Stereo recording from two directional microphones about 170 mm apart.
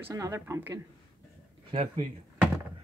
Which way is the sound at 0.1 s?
20° right (ahead or behind).